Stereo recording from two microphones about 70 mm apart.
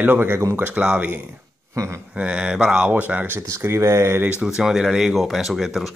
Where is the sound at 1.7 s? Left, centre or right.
Right.